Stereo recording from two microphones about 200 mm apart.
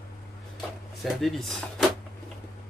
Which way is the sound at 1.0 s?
Centre (ahead or behind).